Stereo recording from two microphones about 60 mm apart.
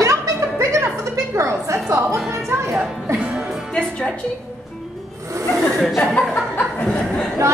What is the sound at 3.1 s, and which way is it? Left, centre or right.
Music, centre.